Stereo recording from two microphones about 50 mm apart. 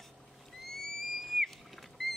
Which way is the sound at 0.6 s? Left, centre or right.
Centre.